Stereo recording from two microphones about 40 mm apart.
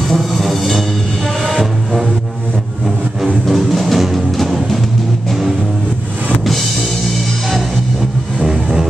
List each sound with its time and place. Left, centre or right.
0.1 s music: centre
3.4 s music: centre
8.4 s vehicle: centre